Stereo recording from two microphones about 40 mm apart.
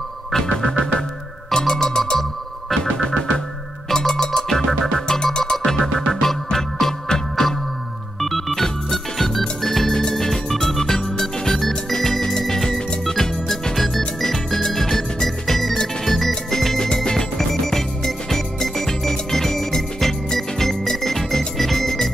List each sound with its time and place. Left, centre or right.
0.3 s music: centre
5.0 s music: centre
5.7 s music: centre
8.6 s music: centre
20.0 s organ: centre